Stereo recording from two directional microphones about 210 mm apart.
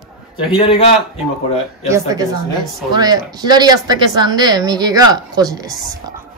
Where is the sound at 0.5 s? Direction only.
20° left (ahead or behind).